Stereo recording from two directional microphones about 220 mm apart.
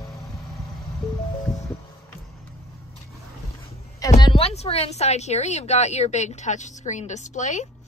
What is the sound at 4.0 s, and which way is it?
A woman's voice, 15° left (ahead or behind).